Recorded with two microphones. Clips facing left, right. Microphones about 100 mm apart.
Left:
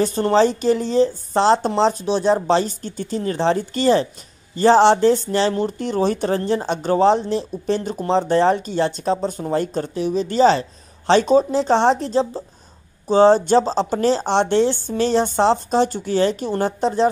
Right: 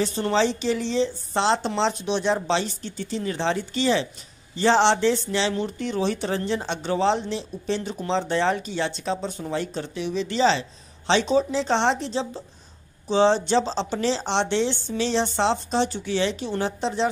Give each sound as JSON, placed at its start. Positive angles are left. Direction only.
{"t": 0.0, "sound": "speech", "side_deg": 45}